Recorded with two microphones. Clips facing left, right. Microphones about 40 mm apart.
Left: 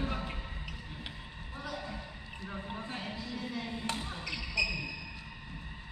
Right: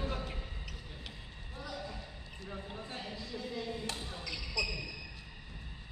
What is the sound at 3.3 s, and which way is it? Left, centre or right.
Basketball bounce, left.